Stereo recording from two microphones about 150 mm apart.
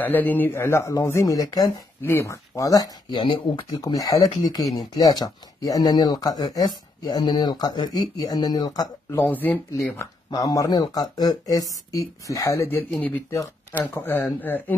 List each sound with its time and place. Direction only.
0.0 s speech: 10° left (ahead or behind)
9.2 s speech: 10° left (ahead or behind)
9.9 s speech: 25° left (ahead or behind)